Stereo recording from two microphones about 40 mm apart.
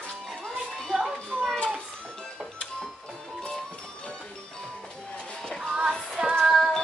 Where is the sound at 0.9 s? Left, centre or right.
Centre.